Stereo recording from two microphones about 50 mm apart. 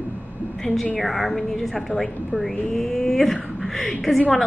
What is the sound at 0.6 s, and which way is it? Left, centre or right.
A woman's voice, centre.